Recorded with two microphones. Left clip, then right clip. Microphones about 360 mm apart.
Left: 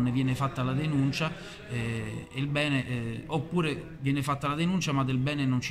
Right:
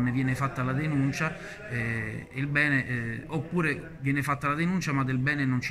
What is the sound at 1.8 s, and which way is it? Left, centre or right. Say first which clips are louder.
Speech: right 4 dB; left.